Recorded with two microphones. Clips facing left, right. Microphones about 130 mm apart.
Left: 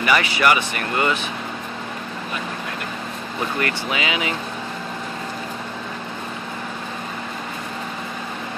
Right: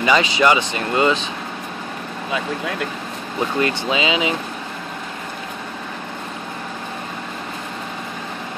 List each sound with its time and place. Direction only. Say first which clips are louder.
0.0 s speech: right 3 dB; 20° right (ahead or behind)
3.5 s speech: right 5 dB; 20° right (ahead or behind)